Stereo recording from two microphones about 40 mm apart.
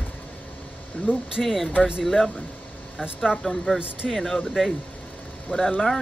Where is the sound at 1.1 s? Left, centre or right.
Left.